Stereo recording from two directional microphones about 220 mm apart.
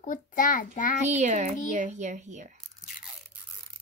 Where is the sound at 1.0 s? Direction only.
35° right (ahead or behind).